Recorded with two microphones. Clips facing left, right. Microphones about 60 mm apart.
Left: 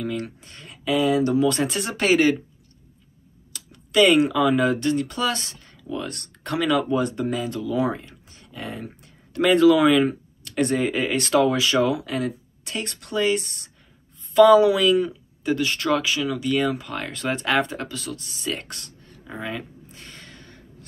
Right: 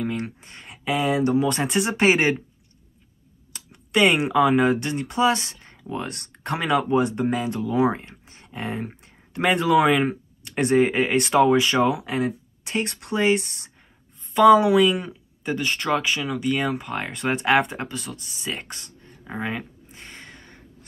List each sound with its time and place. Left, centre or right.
0.0 s speech: right
3.5 s speech: right
14.3 s speech: centre
18.1 s a sound: centre